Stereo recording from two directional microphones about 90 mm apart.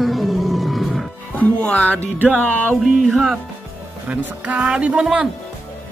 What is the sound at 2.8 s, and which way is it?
Music, centre (ahead or behind).